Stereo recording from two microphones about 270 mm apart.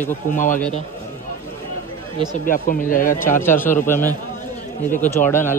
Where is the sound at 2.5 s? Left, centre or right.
Left.